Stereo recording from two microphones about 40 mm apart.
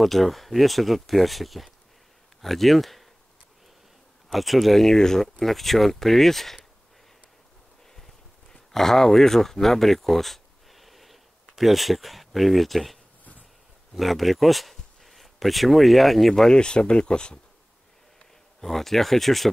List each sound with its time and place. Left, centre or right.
0.0 s speech: centre
4.3 s speech: centre
8.7 s speech: centre
13.9 s speech: centre
16.4 s speech: left
18.6 s speech: centre